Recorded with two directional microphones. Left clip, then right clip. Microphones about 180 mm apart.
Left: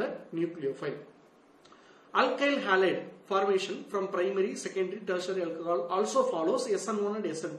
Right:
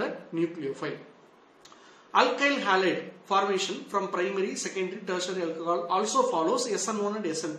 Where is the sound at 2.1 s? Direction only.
30° right (ahead or behind).